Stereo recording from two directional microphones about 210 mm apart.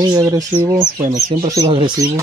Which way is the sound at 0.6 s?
20° right (ahead or behind).